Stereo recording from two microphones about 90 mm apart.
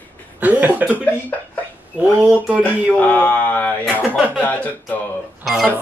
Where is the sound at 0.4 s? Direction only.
20° right (ahead or behind).